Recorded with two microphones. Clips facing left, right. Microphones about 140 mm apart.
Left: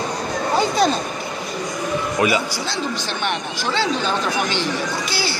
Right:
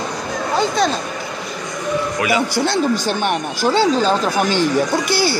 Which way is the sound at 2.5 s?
55° right (ahead or behind).